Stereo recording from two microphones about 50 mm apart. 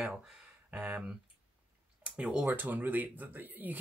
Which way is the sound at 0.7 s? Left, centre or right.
Right.